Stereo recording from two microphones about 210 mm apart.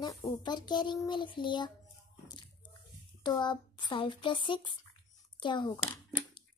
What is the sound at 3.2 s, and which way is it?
A child's voice, 20° left (ahead or behind).